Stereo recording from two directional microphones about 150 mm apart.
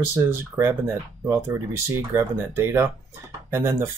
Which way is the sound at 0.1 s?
15° right (ahead or behind).